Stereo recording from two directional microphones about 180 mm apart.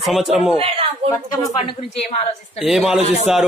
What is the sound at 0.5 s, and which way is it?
Speech, 30° right (ahead or behind).